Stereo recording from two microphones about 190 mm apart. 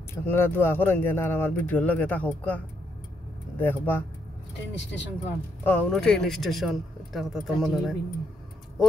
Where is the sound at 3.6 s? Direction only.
10° left (ahead or behind).